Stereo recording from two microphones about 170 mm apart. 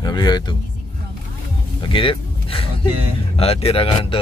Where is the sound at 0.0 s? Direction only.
25° left (ahead or behind).